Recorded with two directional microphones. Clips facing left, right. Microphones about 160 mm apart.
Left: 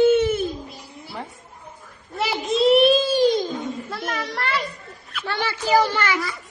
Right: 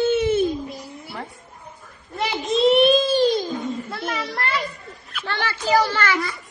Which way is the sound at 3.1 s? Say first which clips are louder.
Even; 15° left (ahead or behind).